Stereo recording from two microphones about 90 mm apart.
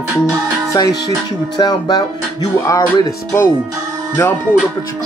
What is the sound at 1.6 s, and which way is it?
Speech, 50° left (ahead or behind).